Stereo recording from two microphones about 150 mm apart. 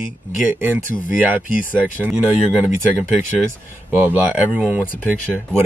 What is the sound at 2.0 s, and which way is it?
Speech, 10° right (ahead or behind).